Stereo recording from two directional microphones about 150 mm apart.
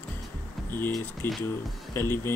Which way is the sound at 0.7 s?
15° left (ahead or behind).